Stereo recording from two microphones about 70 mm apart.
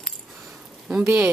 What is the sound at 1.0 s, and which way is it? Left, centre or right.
Speech, right.